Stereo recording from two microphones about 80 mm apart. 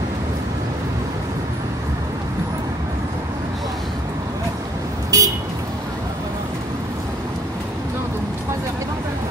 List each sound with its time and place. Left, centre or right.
5.1 s vehicle: right